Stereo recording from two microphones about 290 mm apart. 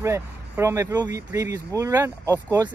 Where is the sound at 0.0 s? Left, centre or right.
Centre.